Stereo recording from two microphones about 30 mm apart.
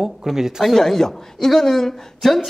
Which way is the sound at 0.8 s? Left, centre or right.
Centre.